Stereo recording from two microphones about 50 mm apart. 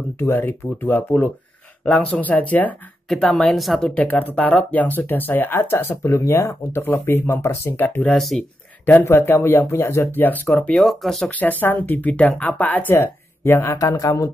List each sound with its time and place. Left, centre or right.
0.2 s speech: left
2.1 s speech: left
3.1 s a woman's voice: centre
3.5 s speech: centre
3.9 s speech: left
7.7 s speech: left
8.1 s speech: centre
8.8 s speech: left
9.7 s speech: left
10.1 s speech: left
10.8 s speech: centre
11.2 s speech: left
12.9 s speech: left
13.7 s speech: left